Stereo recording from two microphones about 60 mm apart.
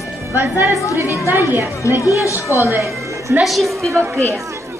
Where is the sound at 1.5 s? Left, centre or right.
Right.